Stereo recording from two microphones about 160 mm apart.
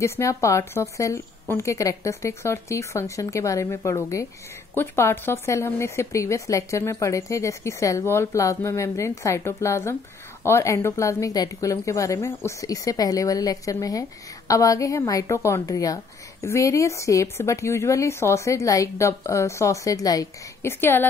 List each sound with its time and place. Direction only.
0.0 s a woman's voice: 20° left (ahead or behind)